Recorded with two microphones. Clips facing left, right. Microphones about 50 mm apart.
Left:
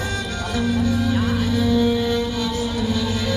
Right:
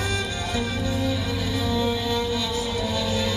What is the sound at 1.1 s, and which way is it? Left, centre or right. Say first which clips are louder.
Music: left 6 dB; left.